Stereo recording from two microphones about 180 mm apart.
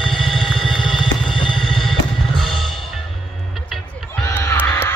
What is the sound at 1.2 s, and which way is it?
Music, 30° left (ahead or behind).